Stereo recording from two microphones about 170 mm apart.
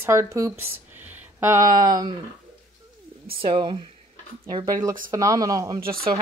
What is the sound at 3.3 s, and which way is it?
Speech, 30° right (ahead or behind).